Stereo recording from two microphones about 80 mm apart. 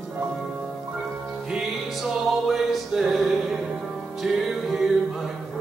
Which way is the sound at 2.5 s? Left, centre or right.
Centre.